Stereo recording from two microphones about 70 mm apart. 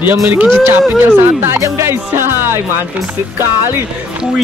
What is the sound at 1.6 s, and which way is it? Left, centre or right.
Music, right.